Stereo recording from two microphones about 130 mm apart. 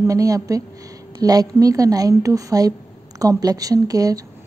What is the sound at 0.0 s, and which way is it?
A woman's voice, 25° right (ahead or behind).